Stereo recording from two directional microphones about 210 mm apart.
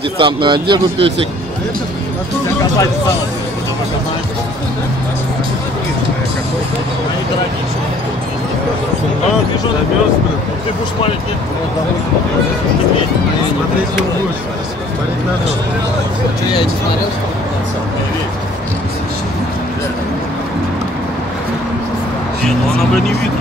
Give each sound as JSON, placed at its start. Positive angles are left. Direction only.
{"t": 0.2, "sound": "speech", "side_deg": -25}